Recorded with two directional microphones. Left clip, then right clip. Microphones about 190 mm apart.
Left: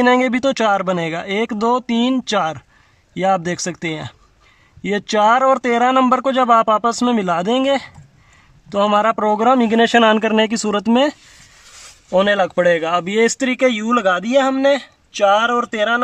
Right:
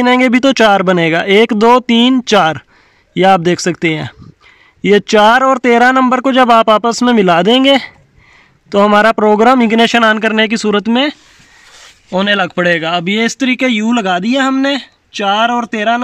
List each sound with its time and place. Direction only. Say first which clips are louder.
0.0 s speech: right 5 dB; 5° right (ahead or behind)
12.2 s speech: right 2 dB; centre (ahead or behind)